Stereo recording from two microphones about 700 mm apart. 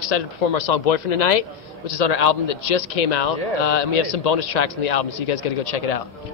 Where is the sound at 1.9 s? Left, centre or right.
Left.